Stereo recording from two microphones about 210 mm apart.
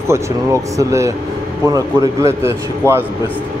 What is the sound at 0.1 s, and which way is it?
A man's voice, 15° right (ahead or behind).